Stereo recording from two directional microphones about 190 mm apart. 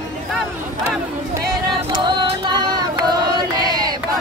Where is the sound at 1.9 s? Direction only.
25° right (ahead or behind).